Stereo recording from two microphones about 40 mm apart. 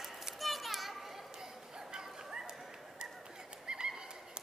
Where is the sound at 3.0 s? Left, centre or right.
Right.